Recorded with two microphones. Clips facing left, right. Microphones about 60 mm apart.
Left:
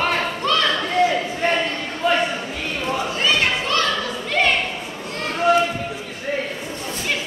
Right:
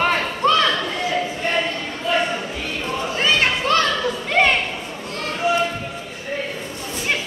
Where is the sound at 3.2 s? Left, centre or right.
Right.